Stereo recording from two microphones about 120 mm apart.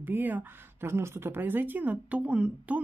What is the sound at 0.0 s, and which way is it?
Speech, 15° right (ahead or behind).